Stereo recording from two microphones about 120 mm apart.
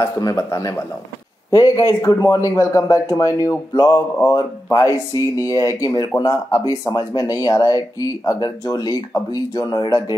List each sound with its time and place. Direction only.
0.0 s speech: 30° left (ahead or behind)